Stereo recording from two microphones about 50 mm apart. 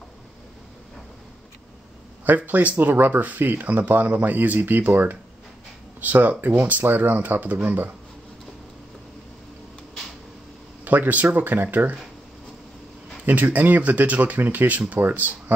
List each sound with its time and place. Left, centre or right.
2.2 s speech: right
10.8 s speech: right
13.2 s speech: right